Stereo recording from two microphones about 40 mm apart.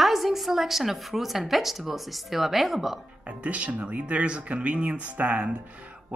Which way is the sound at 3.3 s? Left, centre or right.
Right.